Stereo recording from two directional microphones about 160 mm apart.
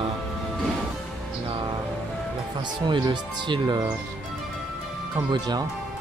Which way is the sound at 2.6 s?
30° right (ahead or behind).